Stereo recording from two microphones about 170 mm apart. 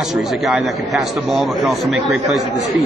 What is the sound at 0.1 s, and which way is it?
A man's voice, centre (ahead or behind).